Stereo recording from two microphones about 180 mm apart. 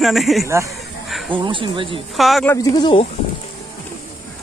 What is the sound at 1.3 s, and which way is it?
Speech, 25° right (ahead or behind).